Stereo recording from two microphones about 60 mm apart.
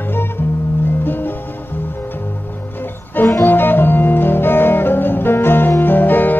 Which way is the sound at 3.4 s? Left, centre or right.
Left.